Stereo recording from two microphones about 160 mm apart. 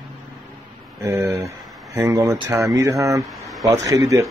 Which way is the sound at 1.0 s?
20° right (ahead or behind).